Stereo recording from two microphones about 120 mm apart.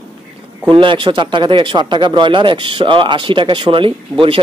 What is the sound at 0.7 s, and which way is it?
Speech, 45° right (ahead or behind).